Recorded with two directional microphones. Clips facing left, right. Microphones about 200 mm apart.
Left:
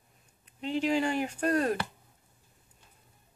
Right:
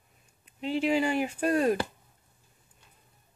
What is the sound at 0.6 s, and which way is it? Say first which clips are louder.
Speech: right 2 dB; 5° right (ahead or behind).